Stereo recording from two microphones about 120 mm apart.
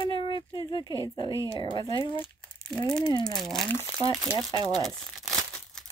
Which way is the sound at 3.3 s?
5° left (ahead or behind).